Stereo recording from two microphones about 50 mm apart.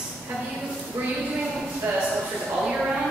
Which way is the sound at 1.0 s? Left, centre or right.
Right.